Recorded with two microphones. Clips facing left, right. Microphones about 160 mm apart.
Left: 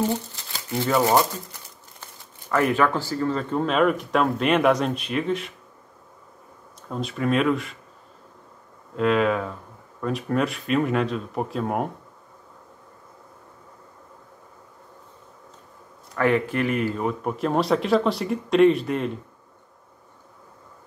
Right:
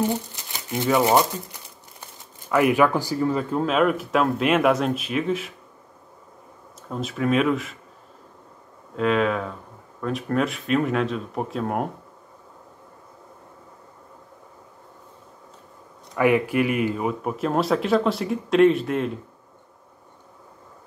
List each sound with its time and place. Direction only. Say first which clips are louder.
0.0 s speech: right 1 dB; 15° right (ahead or behind)
1.0 s crumpling: right 1 dB; 15° right (ahead or behind)
2.5 s speech: right 2 dB; 10° right (ahead or behind)
6.9 s speech: right 1 dB; centre (ahead or behind)
8.9 s speech: left 1 dB; centre (ahead or behind)
16.2 s speech: right 2 dB; 10° right (ahead or behind)